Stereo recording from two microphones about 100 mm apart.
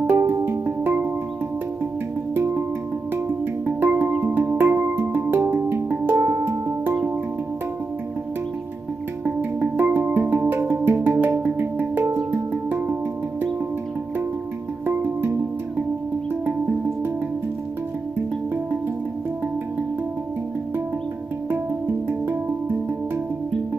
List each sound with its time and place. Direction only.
0.0 s music: 25° right (ahead or behind)
2.3 s music: 25° right (ahead or behind)
3.6 s music: 25° right (ahead or behind)
9.2 s music: 20° right (ahead or behind)
22.0 s music: 25° right (ahead or behind)